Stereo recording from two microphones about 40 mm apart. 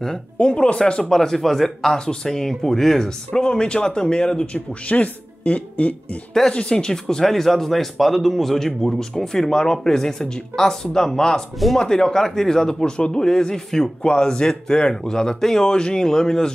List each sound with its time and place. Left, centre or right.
0.4 s speech: left
1.0 s speech: centre
3.3 s speech: left
4.8 s speech: left
6.5 s speech: left